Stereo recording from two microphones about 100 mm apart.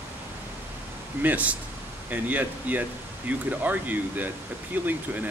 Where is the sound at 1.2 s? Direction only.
15° right (ahead or behind).